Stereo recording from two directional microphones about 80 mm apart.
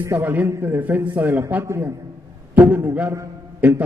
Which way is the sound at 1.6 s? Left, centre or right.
Right.